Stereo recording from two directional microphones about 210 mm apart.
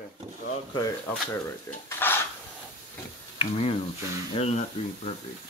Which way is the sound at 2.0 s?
10° left (ahead or behind).